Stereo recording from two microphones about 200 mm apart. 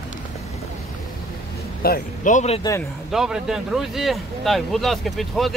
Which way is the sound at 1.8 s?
45° left (ahead or behind).